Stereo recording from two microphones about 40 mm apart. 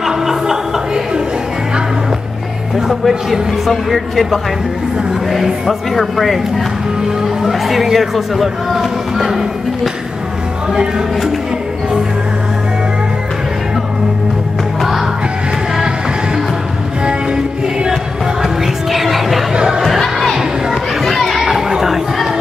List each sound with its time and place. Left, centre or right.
0.0 s music: centre
2.9 s speech: centre
7.4 s speech: centre
14.8 s music: centre
18.4 s music: centre
19.5 s crowd: centre
21.0 s children playing: centre